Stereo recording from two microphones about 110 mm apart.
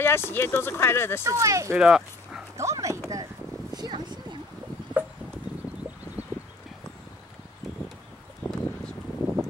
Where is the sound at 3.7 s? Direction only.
40° right (ahead or behind).